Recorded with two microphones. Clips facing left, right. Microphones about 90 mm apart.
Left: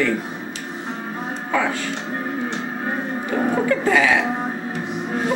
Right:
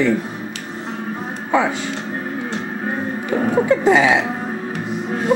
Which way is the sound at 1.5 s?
20° right (ahead or behind).